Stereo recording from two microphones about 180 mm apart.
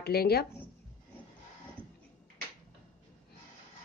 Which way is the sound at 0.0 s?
60° left (ahead or behind).